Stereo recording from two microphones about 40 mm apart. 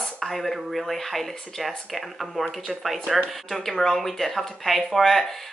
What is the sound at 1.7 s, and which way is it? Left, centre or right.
Speech, centre.